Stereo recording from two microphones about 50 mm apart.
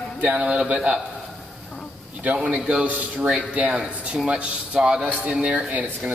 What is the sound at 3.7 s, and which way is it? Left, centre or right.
A man's voice, centre.